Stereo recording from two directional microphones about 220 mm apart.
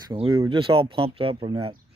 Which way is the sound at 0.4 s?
20° right (ahead or behind).